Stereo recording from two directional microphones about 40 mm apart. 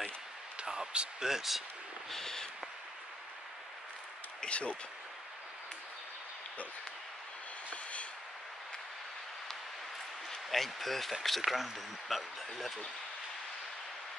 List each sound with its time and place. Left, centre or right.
0.6 s speech: right
2.0 s a sound: centre
4.5 s speech: left
7.7 s vehicle: left
10.3 s speech: centre